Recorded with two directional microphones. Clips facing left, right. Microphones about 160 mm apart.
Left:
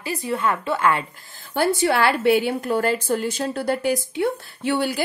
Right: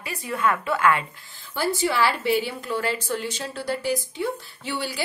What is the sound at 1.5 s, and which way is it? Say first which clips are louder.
A woman's voice: left 4 dB; 60° left (ahead or behind).